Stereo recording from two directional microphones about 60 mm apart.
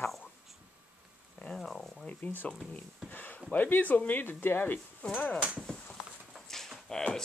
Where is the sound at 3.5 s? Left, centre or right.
Left.